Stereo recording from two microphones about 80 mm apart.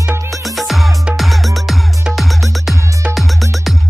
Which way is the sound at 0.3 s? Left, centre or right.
Centre.